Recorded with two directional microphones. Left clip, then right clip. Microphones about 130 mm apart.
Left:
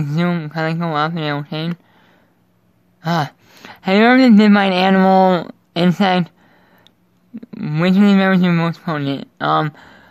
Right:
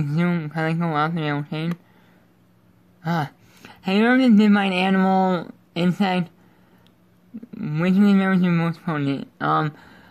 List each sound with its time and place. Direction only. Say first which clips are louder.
0.0 s speech: left 4 dB; 25° left (ahead or behind)
3.0 s gasp: left 6 dB; 35° left (ahead or behind)
3.4 s a sound: left 7 dB; 45° left (ahead or behind)
3.7 s speech: left 7 dB; 30° left (ahead or behind)
4.9 s speech: left 10 dB; 40° left (ahead or behind)
5.7 s speech: left 7 dB; 35° left (ahead or behind)
7.3 s speech: left 6 dB; 45° left (ahead or behind); by 10.0 s 25° left (ahead or behind)